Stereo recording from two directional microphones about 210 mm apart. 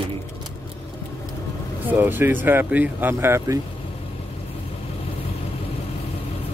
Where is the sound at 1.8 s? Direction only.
10° right (ahead or behind).